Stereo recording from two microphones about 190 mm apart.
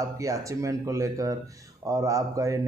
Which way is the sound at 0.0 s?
15° right (ahead or behind).